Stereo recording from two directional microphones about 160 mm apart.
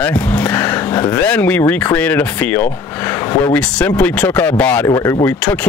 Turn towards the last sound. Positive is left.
turn(degrees=5)  # may be behind; listen again after turning